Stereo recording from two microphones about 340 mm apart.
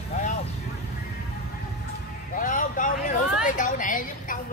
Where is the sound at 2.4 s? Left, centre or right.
Left.